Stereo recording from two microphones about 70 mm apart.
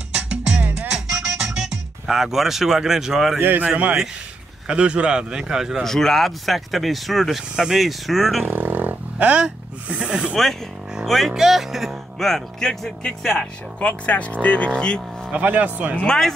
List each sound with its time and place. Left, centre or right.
0.7 s music: centre
3.3 s a man's voice: right; by 5.9 s centre
5.9 s speech: centre
8.5 s a sound: right
11.1 s speech: centre
13.7 s speech: centre
15.3 s speech: right
16.0 s speech: centre